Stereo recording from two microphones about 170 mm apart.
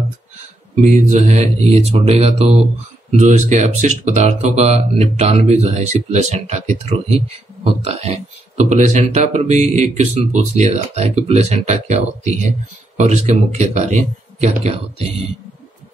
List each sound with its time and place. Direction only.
0.7 s speech: 45° right (ahead or behind)